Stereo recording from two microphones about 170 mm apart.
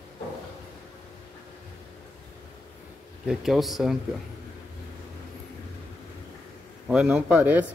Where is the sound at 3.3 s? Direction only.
Centre (ahead or behind).